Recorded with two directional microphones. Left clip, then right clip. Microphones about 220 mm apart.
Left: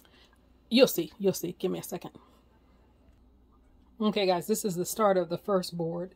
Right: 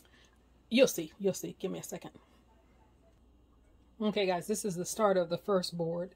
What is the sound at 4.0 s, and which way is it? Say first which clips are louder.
Speech: left 4 dB; 25° left (ahead or behind).